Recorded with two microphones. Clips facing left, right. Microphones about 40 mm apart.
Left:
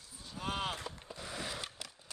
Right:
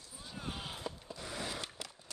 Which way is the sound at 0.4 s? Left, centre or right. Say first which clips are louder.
Left 7 dB; left.